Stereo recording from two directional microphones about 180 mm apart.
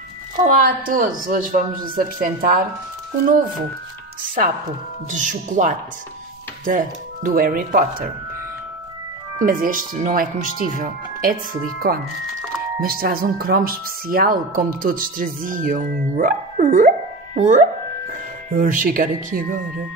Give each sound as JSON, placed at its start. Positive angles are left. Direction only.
{"t": 0.4, "sound": "speech", "side_deg": -50}
{"t": 5.1, "sound": "speech", "side_deg": -45}
{"t": 9.4, "sound": "speech", "side_deg": -50}